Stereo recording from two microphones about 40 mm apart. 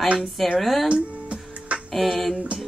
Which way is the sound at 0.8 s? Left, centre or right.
Right.